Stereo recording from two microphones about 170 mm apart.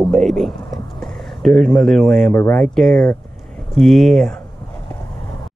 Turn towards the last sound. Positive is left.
turn(degrees=0)  # may be behind; listen again after turning